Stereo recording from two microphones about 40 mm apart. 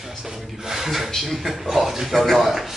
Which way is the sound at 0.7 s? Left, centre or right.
Centre.